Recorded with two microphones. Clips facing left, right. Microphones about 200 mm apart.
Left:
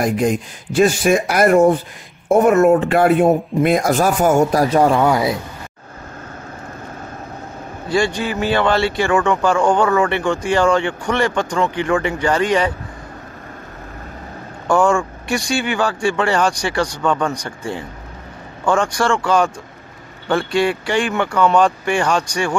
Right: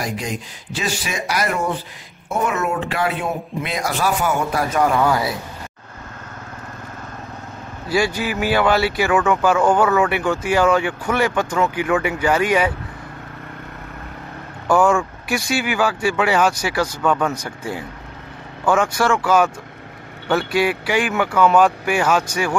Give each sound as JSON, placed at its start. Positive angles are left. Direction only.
{"t": 0.0, "sound": "speech", "side_deg": 50}
{"t": 7.9, "sound": "speech", "side_deg": -5}
{"t": 14.7, "sound": "speech", "side_deg": -5}